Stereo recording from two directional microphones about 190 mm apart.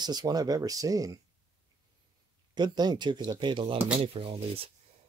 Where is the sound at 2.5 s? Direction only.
20° right (ahead or behind).